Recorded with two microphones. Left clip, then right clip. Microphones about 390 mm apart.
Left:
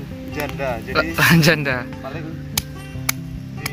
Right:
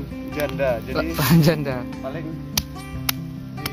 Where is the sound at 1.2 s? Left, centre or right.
Centre.